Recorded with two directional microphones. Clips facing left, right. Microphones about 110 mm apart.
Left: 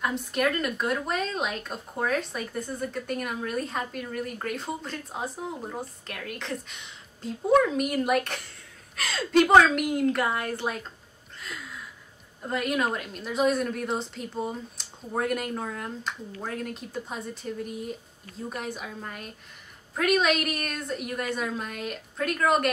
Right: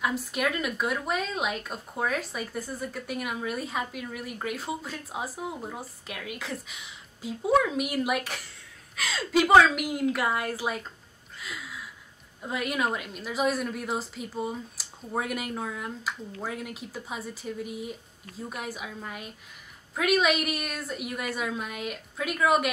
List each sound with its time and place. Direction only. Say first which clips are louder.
0.0 s speech: left 2 dB; 5° right (ahead or behind)
11.3 s a sound: even; 5° right (ahead or behind)
12.4 s speech: left 2 dB; centre (ahead or behind)